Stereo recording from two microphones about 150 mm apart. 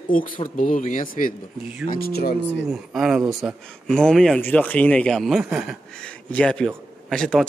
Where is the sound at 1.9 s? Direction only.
85° left.